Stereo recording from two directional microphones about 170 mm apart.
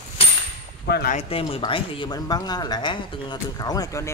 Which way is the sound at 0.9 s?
70° left (ahead or behind).